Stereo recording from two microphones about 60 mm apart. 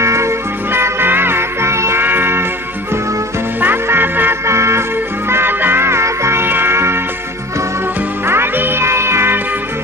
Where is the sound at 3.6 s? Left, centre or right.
Right.